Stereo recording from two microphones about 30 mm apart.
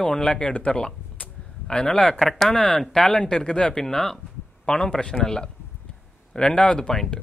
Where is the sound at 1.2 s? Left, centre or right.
Left.